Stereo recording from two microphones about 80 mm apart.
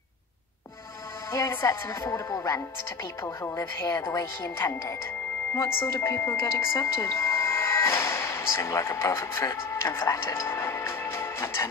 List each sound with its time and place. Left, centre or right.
1.3 s speech: left